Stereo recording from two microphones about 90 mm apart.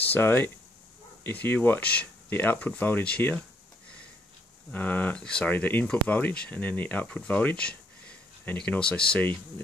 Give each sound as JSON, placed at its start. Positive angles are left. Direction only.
{"t": 0.1, "sound": "speech", "side_deg": 25}
{"t": 4.7, "sound": "speech", "side_deg": 20}
{"t": 5.5, "sound": "speech", "side_deg": 20}